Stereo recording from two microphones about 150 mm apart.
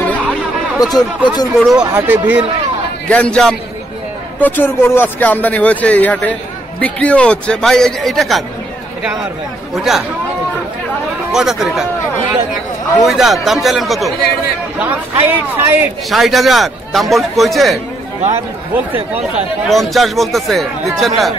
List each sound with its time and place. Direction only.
0.0 s a sound: 10° left (ahead or behind)
0.9 s speech: 25° left (ahead or behind)
1.6 s a man's voice: centre (ahead or behind)
1.9 s speech: 15° right (ahead or behind)
3.1 s a man's voice: 5° left (ahead or behind)
9.8 s a man's voice: 5° right (ahead or behind)
11.3 s a man's voice: centre (ahead or behind)
13.0 s a man's voice: centre (ahead or behind)
14.8 s speech: 10° right (ahead or behind)
16.1 s a man's voice: centre (ahead or behind)
19.7 s a man's voice: centre (ahead or behind)